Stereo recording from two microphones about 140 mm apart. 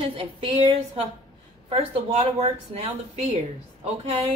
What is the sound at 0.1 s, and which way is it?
A woman's voice, 40° right (ahead or behind).